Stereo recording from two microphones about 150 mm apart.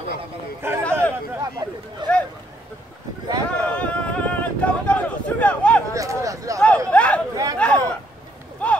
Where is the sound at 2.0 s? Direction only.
30° right (ahead or behind).